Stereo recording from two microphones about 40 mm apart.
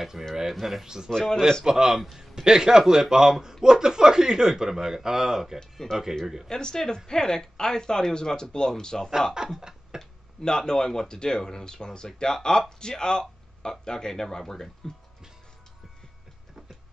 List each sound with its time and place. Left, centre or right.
0.2 s speech: centre
5.6 s speech: centre
9.4 s speech: centre
10.4 s speech: centre